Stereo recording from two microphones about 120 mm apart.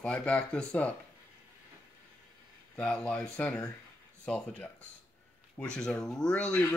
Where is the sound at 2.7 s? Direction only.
10° left (ahead or behind).